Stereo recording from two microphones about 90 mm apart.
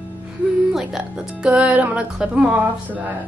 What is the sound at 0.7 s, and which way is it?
Speech, 10° right (ahead or behind).